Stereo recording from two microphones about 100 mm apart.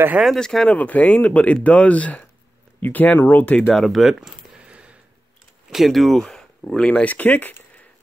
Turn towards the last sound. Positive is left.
turn(degrees=20)  # may be behind; listen again after turning